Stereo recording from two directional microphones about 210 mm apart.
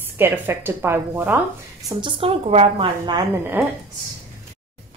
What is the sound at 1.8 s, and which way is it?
A woman's voice, 25° right (ahead or behind).